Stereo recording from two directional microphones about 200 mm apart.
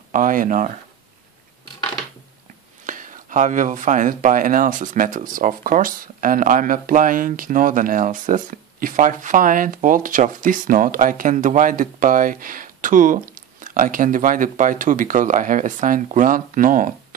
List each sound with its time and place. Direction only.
0.1 s speech: 40° right (ahead or behind)
2.9 s speech: 40° right (ahead or behind)